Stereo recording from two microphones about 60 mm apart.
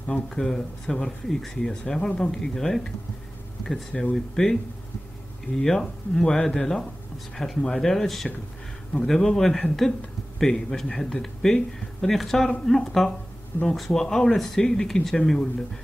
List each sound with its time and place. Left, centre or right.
0.1 s speech: centre
5.6 s speech: centre